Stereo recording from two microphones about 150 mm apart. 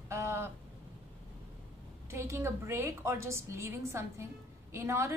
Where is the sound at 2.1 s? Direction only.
15° right (ahead or behind).